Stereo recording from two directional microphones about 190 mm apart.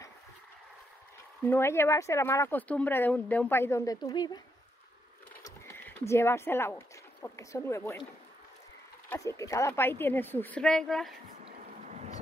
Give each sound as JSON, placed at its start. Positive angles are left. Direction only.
{"t": 1.4, "sound": "speech", "side_deg": 10}
{"t": 5.4, "sound": "speech", "side_deg": 10}
{"t": 9.1, "sound": "speech", "side_deg": 15}
{"t": 11.4, "sound": "vehicle", "side_deg": -35}